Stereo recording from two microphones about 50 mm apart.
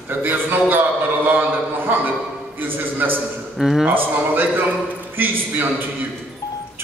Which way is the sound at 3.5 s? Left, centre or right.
Centre.